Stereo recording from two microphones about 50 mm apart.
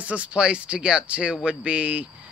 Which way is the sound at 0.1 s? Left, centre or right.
Right.